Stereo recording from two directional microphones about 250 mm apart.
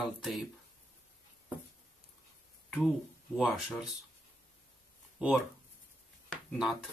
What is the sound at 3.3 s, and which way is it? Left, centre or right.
Speech, centre.